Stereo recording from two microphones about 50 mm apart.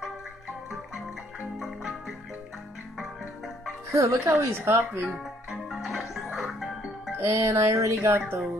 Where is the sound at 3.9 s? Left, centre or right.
Right.